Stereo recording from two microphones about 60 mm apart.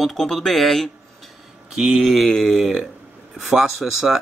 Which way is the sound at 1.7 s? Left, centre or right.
Centre.